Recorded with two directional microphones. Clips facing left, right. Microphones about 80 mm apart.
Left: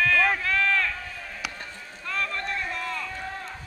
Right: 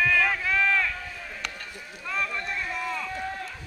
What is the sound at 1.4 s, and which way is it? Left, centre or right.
Run, centre.